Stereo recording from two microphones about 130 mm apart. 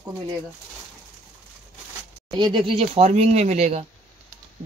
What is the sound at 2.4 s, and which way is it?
Speech, 35° right (ahead or behind).